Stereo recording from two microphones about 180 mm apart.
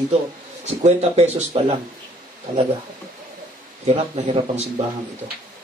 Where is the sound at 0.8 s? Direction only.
35° right (ahead or behind).